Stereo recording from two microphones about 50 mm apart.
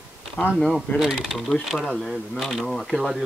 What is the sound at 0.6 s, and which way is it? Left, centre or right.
A man's voice, centre.